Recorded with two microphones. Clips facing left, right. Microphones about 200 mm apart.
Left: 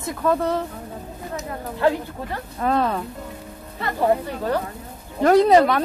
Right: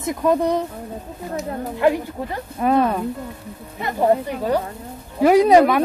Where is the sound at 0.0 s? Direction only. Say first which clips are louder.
Right 3 dB; 15° right (ahead or behind).